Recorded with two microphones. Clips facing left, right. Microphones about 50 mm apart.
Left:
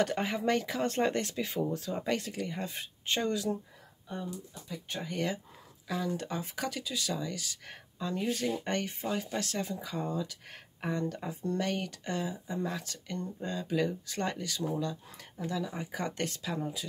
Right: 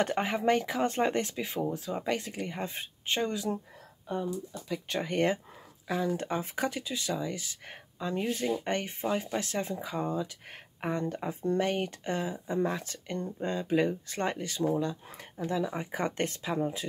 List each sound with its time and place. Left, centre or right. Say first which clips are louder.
0.0 s speech: right 2 dB; right; by 2.1 s centre
2.1 s speech: even; right
3.2 s speech: even; centre
4.1 s speech: right 6 dB; right
5.0 s speech: right 6 dB; right
5.9 s speech: right 4 dB; right